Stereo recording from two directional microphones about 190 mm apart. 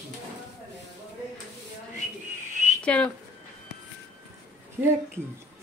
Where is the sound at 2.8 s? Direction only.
5° left (ahead or behind).